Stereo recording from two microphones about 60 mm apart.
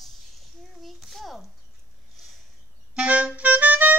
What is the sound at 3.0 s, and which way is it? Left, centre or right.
Clarinet, right.